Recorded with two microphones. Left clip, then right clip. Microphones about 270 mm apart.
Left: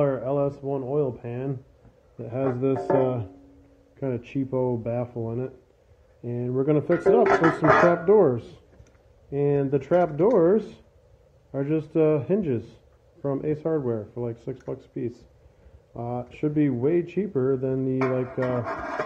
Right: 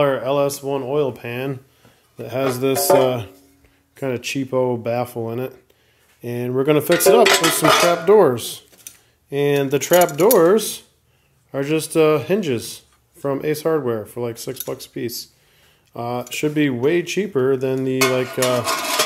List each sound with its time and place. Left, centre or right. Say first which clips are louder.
0.0 s speech: right 6 dB; centre
2.1 s cutlery: right 6 dB; centre
14.7 s speech: right 4 dB; centre
15.9 s cutlery: right 7 dB; right